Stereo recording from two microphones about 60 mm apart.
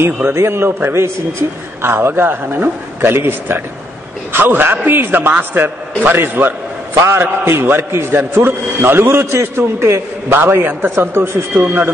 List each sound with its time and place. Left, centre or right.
0.3 s a man's voice: right
9.1 s a man's voice: right
10.3 s a man's voice: right